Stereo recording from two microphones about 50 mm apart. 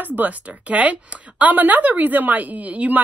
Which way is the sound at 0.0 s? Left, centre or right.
Right.